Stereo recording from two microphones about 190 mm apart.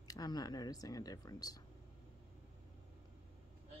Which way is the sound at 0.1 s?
20° left (ahead or behind).